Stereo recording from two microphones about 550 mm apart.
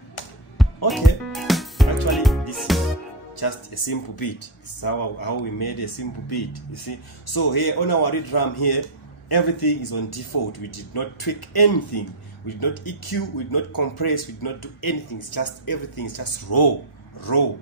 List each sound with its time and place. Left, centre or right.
0.8 s music: centre
3.3 s speech: left
17.2 s speech: left